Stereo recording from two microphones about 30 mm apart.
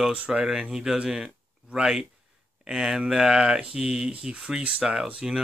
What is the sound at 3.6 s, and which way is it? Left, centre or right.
Speech, right.